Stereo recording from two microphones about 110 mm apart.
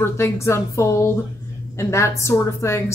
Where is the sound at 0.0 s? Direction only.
25° left (ahead or behind).